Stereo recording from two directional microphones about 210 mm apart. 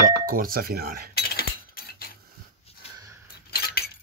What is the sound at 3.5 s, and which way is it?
Cutlery, 45° left (ahead or behind).